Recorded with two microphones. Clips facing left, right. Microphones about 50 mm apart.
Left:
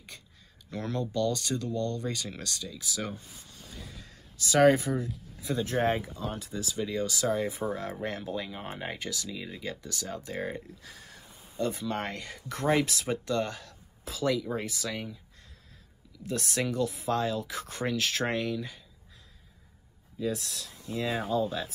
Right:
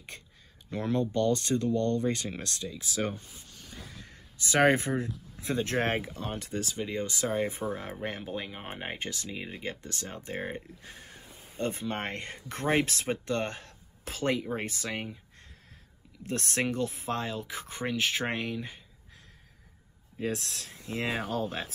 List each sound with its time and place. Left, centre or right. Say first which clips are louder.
0.1 s a sound: right 3 dB; right
0.7 s speech: right 4 dB; right
6.8 s speech: left 4 dB; right
16.2 s speech: even; right
20.2 s speech: left 1 dB; right
21.3 s speech: left 3 dB; right